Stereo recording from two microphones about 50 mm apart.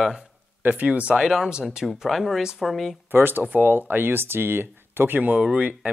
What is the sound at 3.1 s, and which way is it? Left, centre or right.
Speech, right.